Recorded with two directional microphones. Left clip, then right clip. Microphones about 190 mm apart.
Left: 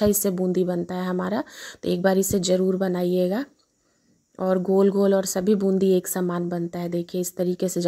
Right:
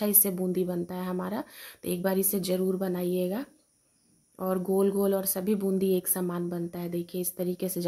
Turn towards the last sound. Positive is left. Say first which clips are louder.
# left 7 dB
turn(degrees=35)  # may be behind; listen again after turning